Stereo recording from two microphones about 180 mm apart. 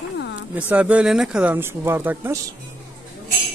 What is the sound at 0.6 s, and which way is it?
Speech, 10° right (ahead or behind).